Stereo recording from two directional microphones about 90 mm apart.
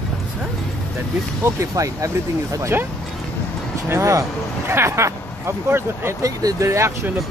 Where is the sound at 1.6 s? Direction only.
35° right (ahead or behind).